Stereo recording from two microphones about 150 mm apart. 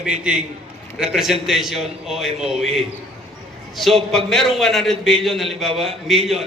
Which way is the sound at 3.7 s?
Centre (ahead or behind).